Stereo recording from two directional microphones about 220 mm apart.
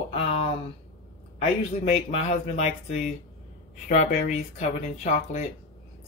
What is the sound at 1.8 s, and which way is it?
Speech, 30° left (ahead or behind).